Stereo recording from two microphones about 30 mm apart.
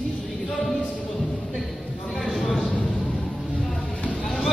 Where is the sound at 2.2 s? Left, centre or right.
Centre.